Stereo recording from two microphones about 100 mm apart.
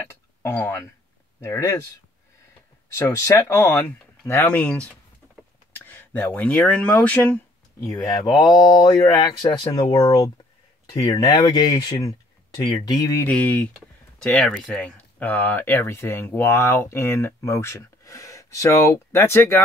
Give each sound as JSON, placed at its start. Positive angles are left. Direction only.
{"t": 0.1, "sound": "speech", "side_deg": 25}
{"t": 3.0, "sound": "speech", "side_deg": 30}
{"t": 4.3, "sound": "speech", "side_deg": 15}
{"t": 7.8, "sound": "speech", "side_deg": 35}
{"t": 9.8, "sound": "speech", "side_deg": 55}
{"t": 10.1, "sound": "speech", "side_deg": 40}
{"t": 12.0, "sound": "a sound", "side_deg": 35}
{"t": 12.8, "sound": "speech", "side_deg": 40}
{"t": 13.3, "sound": "speech", "side_deg": 15}
{"t": 14.2, "sound": "speech", "side_deg": 5}